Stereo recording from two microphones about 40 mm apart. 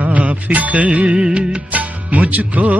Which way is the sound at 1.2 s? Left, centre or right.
Right.